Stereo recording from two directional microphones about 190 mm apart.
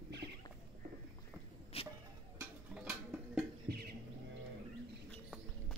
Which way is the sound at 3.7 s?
60° right (ahead or behind).